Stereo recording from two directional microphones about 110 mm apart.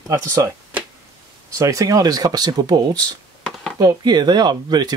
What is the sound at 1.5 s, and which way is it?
Speech, 30° right (ahead or behind).